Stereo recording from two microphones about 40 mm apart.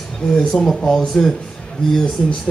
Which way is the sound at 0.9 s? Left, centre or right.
Centre.